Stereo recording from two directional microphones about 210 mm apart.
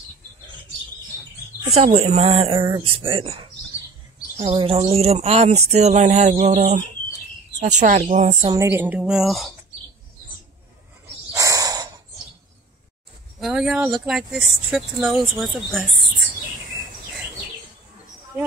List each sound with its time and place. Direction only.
1.7 s speech: 30° right (ahead or behind)
8.5 s a woman's voice: 15° right (ahead or behind)
11.3 s owl: 15° right (ahead or behind)
13.4 s speech: 5° right (ahead or behind)